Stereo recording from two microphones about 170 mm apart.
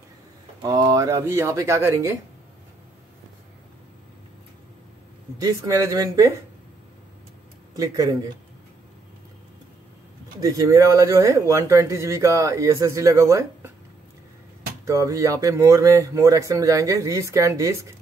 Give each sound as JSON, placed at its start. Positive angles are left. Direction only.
{"t": 0.6, "sound": "speech", "side_deg": -25}
{"t": 5.4, "sound": "speech", "side_deg": -20}
{"t": 7.7, "sound": "speech", "side_deg": -20}
{"t": 10.4, "sound": "speech", "side_deg": -20}
{"t": 14.9, "sound": "speech", "side_deg": -20}